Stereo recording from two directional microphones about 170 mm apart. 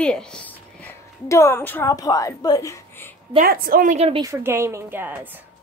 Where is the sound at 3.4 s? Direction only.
60° right (ahead or behind).